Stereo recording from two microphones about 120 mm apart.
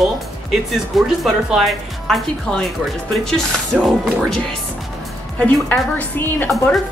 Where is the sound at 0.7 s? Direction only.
Centre (ahead or behind).